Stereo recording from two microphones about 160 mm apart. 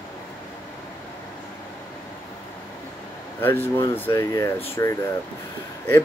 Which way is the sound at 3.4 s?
15° left (ahead or behind).